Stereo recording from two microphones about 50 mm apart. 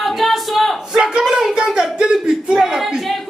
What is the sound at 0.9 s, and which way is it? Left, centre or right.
Speech, centre.